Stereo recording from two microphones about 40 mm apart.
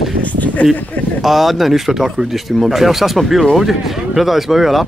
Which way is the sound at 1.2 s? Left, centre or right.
Centre.